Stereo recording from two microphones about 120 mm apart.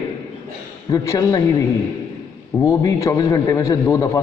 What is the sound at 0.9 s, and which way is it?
A man's voice, 25° left (ahead or behind).